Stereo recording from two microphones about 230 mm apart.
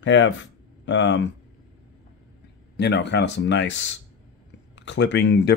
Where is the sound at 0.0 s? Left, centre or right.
Left.